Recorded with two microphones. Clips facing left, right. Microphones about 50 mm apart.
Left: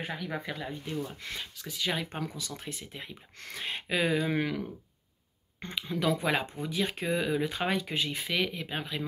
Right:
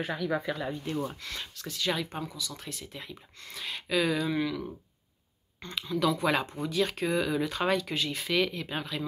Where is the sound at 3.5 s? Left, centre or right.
Left.